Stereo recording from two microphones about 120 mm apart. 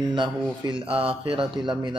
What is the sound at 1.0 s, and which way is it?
Speech, 50° right (ahead or behind).